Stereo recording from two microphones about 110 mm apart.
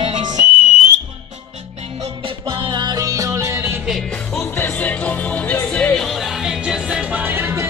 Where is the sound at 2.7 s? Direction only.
40° right (ahead or behind).